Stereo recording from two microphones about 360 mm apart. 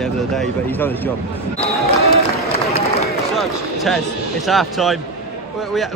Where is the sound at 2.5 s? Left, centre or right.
Centre.